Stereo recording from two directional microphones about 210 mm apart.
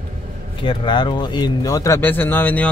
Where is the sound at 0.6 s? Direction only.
20° left (ahead or behind).